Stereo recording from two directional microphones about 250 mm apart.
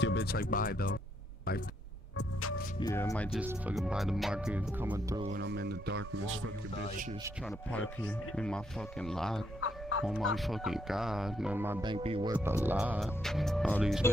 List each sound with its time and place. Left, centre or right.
0.0 s speech: left
2.1 s music: left
2.8 s speech: centre
3.3 s speech: centre
5.4 s speech: right
6.1 s speech: right
8.4 s speech: centre
9.6 s fowl: left
10.0 s speech: centre; by 12.4 s right
12.4 s speech: centre